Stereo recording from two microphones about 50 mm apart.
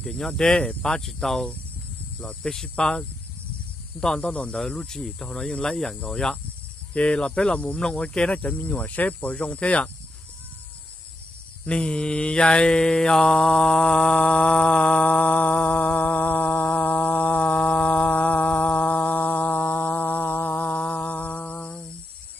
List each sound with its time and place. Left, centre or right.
0.0 s speech: centre
6.9 s speech: left
11.6 s mantra: left